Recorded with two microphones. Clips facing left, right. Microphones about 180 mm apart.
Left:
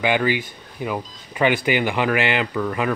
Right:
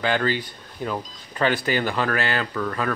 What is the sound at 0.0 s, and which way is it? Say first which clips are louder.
Speech: left 3 dB; 15° left (ahead or behind).